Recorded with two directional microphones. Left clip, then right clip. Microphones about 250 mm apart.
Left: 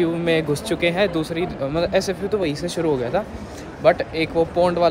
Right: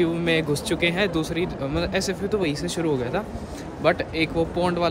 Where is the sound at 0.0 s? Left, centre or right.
Centre.